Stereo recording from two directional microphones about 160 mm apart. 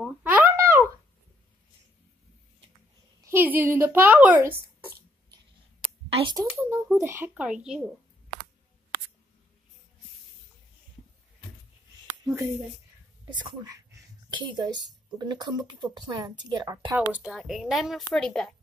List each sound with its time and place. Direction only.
0.2 s a sound: 10° right (ahead or behind)
3.3 s a woman's voice: 10° right (ahead or behind)
6.0 s a sound: 40° right (ahead or behind)
6.5 s speech: 10° right (ahead or behind)
13.3 s speech: 30° right (ahead or behind)
17.1 s a woman's voice: 5° right (ahead or behind)